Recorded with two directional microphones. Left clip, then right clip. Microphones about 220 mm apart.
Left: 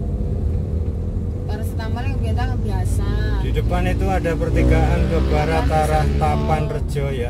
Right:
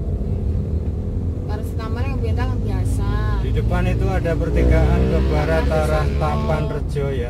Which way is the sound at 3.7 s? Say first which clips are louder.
Left 2 dB; 25° left (ahead or behind).